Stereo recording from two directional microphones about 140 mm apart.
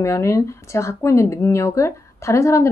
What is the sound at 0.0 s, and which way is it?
A woman's voice, 20° left (ahead or behind).